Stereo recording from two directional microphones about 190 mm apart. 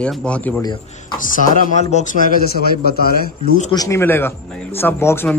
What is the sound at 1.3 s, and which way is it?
Speech, 40° left (ahead or behind).